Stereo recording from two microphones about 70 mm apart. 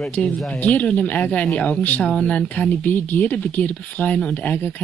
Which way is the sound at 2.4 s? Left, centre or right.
Left.